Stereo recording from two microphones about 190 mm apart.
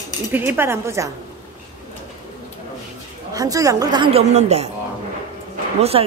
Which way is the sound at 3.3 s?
20° right (ahead or behind).